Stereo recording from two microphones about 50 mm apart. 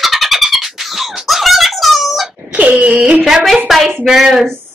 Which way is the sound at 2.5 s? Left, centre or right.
Right.